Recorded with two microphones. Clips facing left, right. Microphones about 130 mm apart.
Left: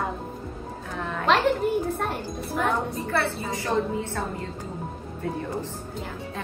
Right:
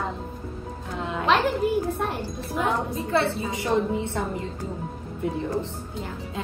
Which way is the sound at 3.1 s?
20° right (ahead or behind).